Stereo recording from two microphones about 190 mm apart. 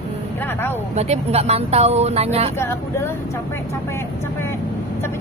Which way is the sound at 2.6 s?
15° left (ahead or behind).